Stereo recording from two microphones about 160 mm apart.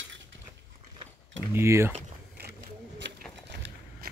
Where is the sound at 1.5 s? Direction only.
15° right (ahead or behind).